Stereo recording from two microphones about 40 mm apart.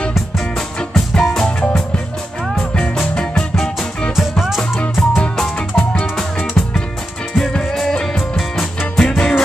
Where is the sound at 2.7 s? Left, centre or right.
Left.